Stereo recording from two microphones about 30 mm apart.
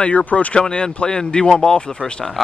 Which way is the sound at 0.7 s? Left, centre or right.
Left.